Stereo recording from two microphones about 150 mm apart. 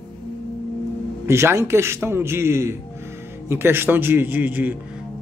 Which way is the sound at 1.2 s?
20° right (ahead or behind).